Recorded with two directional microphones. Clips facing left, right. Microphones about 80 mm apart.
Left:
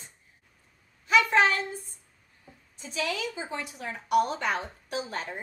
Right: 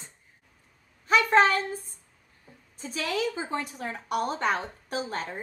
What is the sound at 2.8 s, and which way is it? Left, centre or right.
A woman's voice, right.